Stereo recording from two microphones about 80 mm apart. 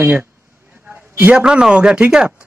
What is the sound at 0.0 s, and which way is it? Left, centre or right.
A man's voice, right.